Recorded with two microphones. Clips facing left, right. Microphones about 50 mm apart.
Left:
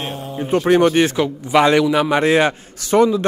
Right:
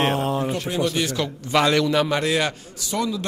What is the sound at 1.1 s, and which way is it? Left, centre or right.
Speech, centre.